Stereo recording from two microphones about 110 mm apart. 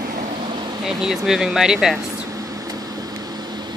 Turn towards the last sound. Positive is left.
turn(degrees=-35)  # may be behind; listen again after turning